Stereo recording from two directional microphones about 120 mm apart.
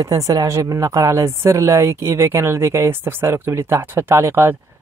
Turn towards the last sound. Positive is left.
turn(degrees=-20)  # may be behind; listen again after turning